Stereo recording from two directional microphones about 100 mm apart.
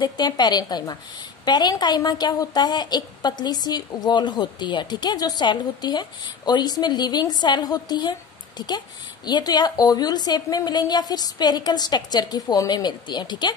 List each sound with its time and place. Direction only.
0.0 s a woman's voice: 45° left (ahead or behind)